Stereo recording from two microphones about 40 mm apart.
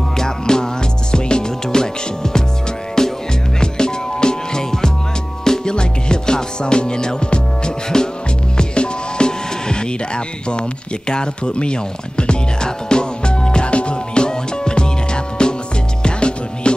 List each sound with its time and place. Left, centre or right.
0.2 s music: centre